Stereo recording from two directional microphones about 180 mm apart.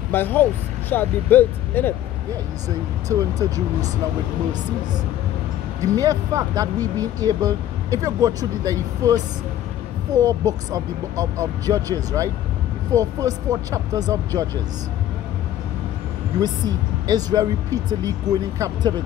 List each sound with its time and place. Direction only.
0.1 s speech: 10° left (ahead or behind)
3.1 s speech: 20° right (ahead or behind)
5.9 s speech: 20° right (ahead or behind)
16.3 s speech: 20° right (ahead or behind)